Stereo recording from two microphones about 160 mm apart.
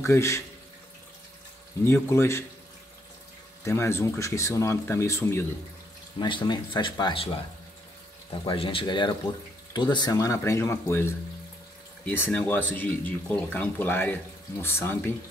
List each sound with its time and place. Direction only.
0.0 s speech: 20° left (ahead or behind)
1.9 s speech: 15° left (ahead or behind)
3.6 s speech: 15° left (ahead or behind)
6.1 s speech: 30° left (ahead or behind)
8.5 s speech: 35° left (ahead or behind); by 15.1 s 15° left (ahead or behind)